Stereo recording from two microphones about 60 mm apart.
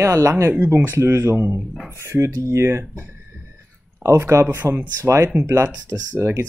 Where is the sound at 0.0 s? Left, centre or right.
Right.